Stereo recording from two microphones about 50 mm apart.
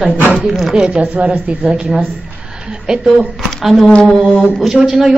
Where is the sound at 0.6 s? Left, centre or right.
Centre.